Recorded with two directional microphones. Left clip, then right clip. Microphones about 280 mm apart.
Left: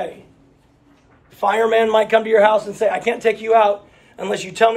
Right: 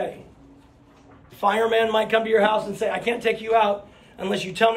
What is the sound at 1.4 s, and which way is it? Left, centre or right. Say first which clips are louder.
A man's voice: left 4 dB; centre.